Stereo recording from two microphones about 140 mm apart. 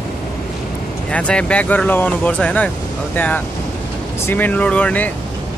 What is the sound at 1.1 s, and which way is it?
Speech, 10° left (ahead or behind).